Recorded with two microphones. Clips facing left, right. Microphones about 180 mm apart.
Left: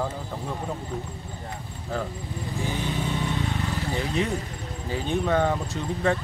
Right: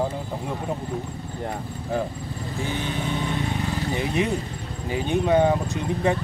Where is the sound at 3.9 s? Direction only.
15° right (ahead or behind).